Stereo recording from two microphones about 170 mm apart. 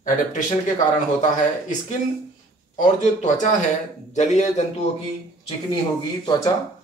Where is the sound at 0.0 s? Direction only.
50° left (ahead or behind).